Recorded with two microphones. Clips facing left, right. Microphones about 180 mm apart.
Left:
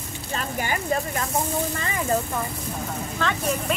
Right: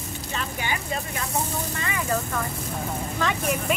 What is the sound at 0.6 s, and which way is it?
Speech, 45° left (ahead or behind).